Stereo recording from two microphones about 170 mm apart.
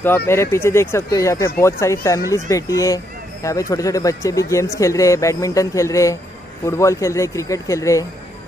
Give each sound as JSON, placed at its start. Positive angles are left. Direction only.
{"t": 0.3, "sound": "speech", "side_deg": 15}